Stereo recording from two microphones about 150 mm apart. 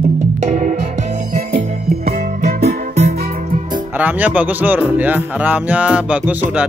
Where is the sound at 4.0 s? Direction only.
10° right (ahead or behind).